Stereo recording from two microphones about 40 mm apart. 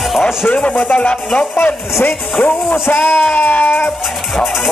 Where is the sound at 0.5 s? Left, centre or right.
Left.